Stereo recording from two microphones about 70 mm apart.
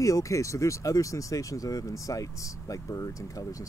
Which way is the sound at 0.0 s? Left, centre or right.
Left.